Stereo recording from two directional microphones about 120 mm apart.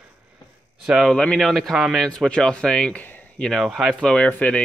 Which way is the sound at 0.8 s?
Centre (ahead or behind).